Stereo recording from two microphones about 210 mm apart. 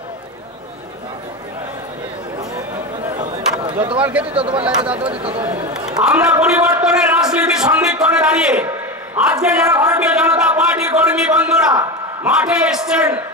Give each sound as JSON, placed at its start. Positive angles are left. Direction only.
{"t": 3.9, "sound": "a man's voice", "side_deg": -5}
{"t": 4.3, "sound": "speech", "side_deg": -25}
{"t": 4.6, "sound": "a man's voice", "side_deg": -5}